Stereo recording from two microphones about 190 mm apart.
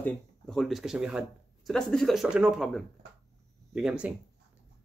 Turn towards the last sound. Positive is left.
turn(degrees=-5)  # may be behind; listen again after turning